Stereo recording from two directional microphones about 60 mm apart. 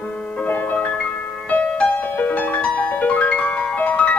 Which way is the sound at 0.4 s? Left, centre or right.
Left.